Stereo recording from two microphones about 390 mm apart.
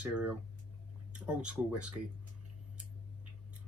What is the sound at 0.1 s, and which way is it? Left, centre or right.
Speech, centre.